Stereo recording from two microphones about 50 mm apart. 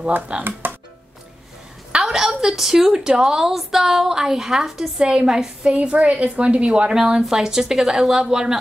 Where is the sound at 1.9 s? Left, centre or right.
Centre.